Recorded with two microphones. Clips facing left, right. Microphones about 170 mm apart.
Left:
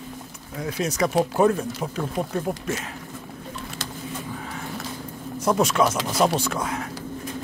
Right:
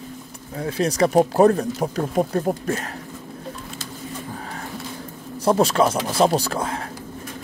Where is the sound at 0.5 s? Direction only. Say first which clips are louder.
Right 4 dB; 30° right (ahead or behind).